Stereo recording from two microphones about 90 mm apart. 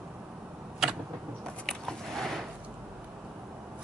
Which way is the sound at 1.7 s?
5° left (ahead or behind).